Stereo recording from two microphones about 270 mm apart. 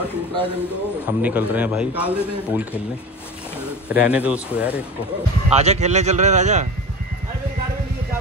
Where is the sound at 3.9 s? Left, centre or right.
Centre.